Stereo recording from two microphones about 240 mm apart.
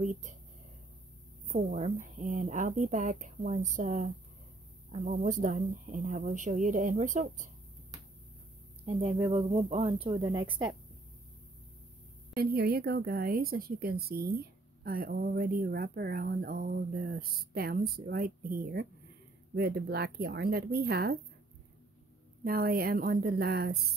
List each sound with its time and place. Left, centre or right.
0.0 s speech: right
1.5 s speech: right
9.2 s speech: centre
12.4 s speech: right
22.4 s speech: right